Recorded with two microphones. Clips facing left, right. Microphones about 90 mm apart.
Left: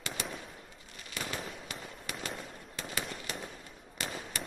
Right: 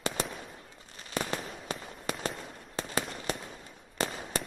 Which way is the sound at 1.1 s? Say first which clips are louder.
Right 5 dB; 35° right (ahead or behind).